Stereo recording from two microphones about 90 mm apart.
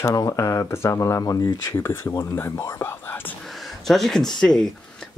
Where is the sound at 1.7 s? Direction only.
25° left (ahead or behind).